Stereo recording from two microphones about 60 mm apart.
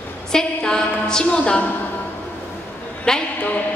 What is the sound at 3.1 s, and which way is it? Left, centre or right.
Speech, centre.